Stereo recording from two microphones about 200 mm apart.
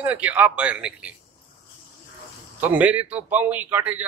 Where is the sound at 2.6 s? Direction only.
10° right (ahead or behind).